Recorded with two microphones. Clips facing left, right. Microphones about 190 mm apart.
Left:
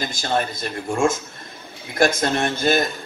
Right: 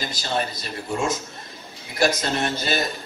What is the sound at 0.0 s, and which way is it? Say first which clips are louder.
A man's voice: left 3 dB; 50° left (ahead or behind).